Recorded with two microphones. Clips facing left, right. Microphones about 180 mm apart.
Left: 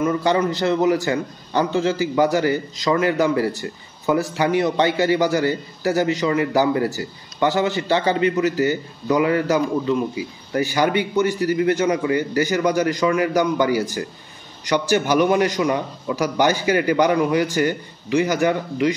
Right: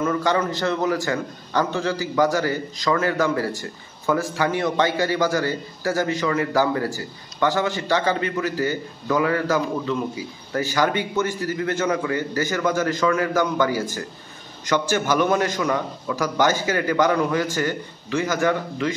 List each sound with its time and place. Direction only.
0.0 s a man's voice: 20° left (ahead or behind)